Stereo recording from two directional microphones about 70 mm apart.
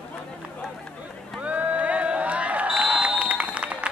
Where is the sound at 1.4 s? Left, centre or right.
Right.